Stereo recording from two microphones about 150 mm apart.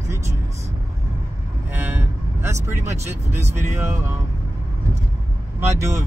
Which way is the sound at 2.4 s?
15° right (ahead or behind).